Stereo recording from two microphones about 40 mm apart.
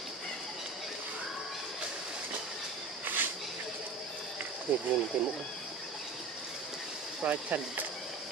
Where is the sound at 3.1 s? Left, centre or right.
Right.